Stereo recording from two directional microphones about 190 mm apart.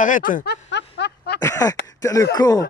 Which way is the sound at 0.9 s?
60° left (ahead or behind).